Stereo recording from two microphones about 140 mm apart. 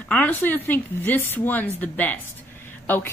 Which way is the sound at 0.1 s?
10° left (ahead or behind).